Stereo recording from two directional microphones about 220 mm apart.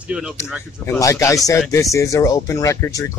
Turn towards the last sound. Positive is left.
turn(degrees=15)  # may be behind; listen again after turning